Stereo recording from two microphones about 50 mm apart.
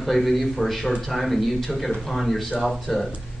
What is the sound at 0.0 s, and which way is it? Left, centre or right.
A man's voice, centre.